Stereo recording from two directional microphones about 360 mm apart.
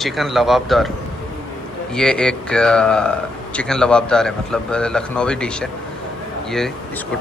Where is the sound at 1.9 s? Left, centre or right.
Centre.